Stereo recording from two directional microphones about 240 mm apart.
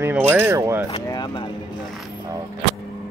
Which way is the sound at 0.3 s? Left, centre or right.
Centre.